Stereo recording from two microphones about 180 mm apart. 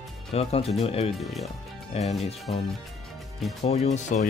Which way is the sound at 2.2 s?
35° left (ahead or behind).